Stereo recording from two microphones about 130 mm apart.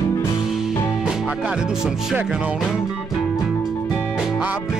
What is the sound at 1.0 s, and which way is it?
Music, 5° right (ahead or behind).